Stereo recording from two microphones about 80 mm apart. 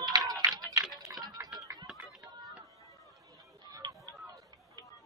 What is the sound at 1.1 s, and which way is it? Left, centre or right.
Music, right.